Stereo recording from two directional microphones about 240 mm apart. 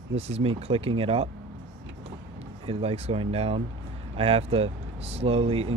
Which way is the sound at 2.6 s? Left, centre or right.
Right.